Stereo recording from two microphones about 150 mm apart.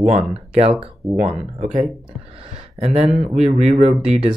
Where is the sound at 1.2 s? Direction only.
45° right (ahead or behind).